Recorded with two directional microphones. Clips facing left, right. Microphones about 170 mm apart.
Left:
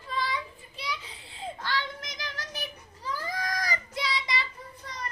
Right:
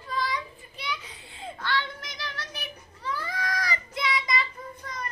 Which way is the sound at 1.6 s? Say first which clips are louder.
Right 3 dB; 40° left (ahead or behind).